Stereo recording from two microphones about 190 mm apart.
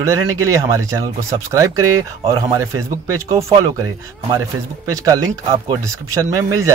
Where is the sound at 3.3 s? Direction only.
30° right (ahead or behind).